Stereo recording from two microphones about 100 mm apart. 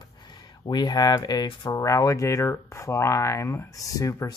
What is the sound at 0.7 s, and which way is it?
Speech, 45° left (ahead or behind).